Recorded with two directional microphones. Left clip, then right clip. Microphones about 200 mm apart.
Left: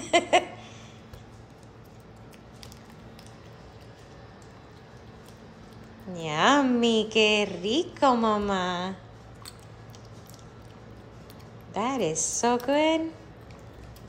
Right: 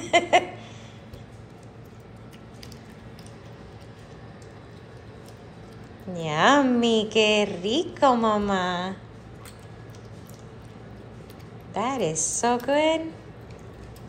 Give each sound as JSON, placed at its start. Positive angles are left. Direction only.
{"t": 0.0, "sound": "laughter", "side_deg": 25}
{"t": 6.1, "sound": "a woman's voice", "side_deg": 20}
{"t": 11.7, "sound": "a woman's voice", "side_deg": 25}